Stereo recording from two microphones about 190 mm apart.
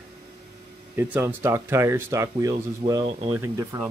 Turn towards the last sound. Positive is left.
turn(degrees=-15)  # may be behind; listen again after turning